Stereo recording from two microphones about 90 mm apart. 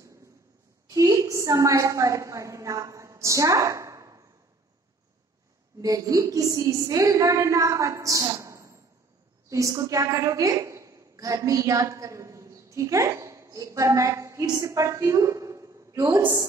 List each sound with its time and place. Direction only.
0.8 s a woman's voice: 40° right (ahead or behind)
5.8 s a woman's voice: 40° right (ahead or behind)